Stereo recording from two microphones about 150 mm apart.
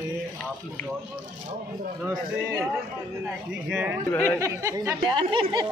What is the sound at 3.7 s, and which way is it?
Speech, 10° right (ahead or behind).